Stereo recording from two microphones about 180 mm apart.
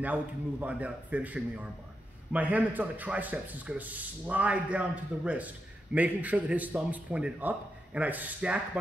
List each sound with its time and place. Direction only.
0.0 s speech: 10° right (ahead or behind)